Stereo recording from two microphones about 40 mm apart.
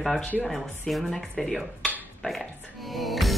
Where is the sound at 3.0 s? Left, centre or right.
Centre.